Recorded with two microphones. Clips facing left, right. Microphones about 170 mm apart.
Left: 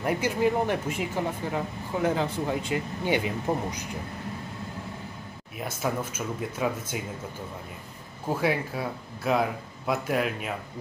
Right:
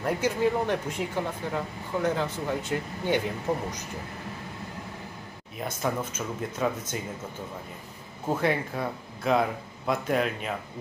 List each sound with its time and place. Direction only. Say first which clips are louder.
0.0 s speech: even; 10° left (ahead or behind)
3.5 s speech: left 1 dB; 25° left (ahead or behind)
5.6 s speech: even; 5° left (ahead or behind)
8.3 s speech: even; 5° left (ahead or behind)